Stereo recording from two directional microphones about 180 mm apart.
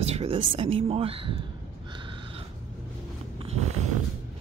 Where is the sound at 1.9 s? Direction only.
30° right (ahead or behind).